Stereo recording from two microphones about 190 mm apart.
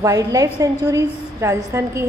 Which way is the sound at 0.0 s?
15° right (ahead or behind).